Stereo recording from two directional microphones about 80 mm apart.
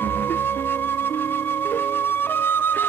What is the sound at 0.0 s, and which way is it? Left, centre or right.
Music, left.